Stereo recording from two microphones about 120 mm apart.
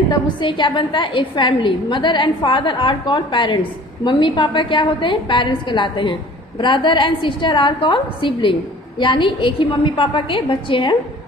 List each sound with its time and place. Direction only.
0.1 s a woman's voice: 40° left (ahead or behind)